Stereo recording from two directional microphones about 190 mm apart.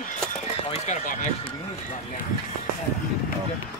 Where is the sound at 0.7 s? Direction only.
35° left (ahead or behind).